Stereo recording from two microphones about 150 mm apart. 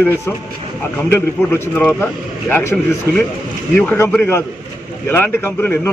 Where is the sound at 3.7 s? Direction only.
15° left (ahead or behind).